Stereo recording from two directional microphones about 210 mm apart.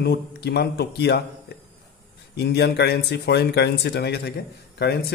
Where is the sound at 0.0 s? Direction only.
50° left (ahead or behind).